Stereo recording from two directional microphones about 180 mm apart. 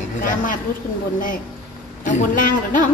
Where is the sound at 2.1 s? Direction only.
45° left (ahead or behind).